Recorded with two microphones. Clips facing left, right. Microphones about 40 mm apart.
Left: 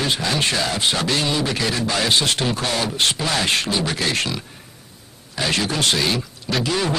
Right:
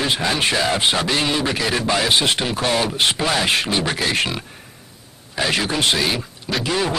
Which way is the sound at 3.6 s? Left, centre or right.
Right.